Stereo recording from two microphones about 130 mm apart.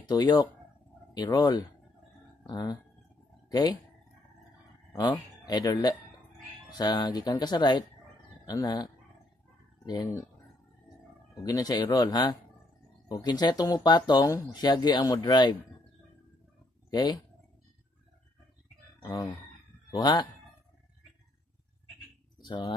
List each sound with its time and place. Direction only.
0.1 s speech: 30° left (ahead or behind)
4.9 s speech: 30° left (ahead or behind)
11.4 s speech: 30° left (ahead or behind)
16.9 s speech: 30° left (ahead or behind)
19.9 s speech: 35° left (ahead or behind)
22.4 s speech: 35° left (ahead or behind)